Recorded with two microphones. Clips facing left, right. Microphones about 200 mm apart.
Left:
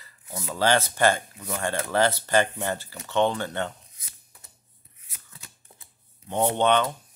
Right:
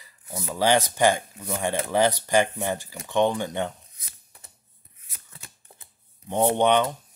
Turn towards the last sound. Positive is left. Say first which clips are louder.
# right 2 dB
turn(degrees=-15)  # may be behind; listen again after turning